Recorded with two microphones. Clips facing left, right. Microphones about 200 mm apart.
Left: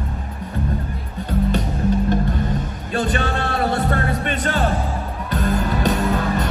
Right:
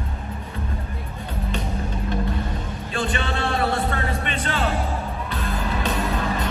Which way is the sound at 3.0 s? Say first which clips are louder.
Left 4 dB; 40° left (ahead or behind).